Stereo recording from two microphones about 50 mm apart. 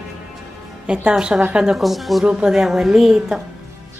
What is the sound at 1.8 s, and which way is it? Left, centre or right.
Speech, centre.